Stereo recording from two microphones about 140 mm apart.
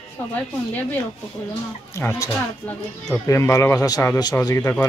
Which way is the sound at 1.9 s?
20° left (ahead or behind).